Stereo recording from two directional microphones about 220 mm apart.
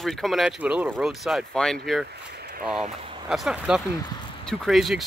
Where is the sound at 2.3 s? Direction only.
45° right (ahead or behind).